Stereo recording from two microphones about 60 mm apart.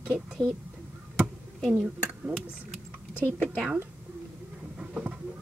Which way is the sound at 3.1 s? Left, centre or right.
Left.